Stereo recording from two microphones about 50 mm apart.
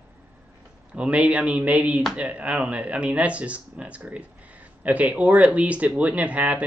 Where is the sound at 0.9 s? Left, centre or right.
Right.